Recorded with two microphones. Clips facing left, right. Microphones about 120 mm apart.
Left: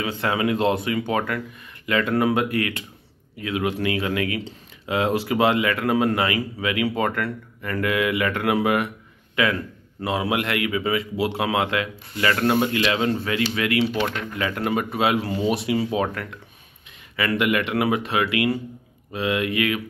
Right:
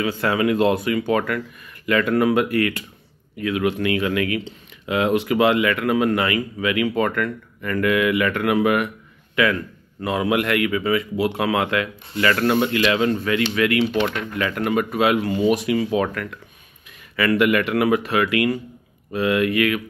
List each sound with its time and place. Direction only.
0.0 s a man's voice: 25° left (ahead or behind)